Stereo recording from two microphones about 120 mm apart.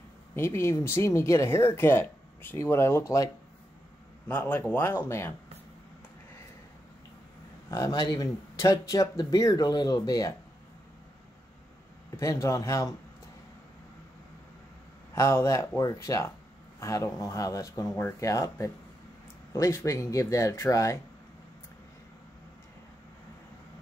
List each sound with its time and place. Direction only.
0.4 s speech: 20° left (ahead or behind)
4.3 s speech: 15° left (ahead or behind)
7.7 s speech: 35° left (ahead or behind)
12.2 s speech: 25° left (ahead or behind)
15.1 s speech: 25° left (ahead or behind)